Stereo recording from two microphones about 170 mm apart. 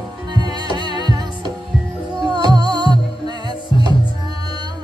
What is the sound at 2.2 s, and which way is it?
Music, 25° right (ahead or behind).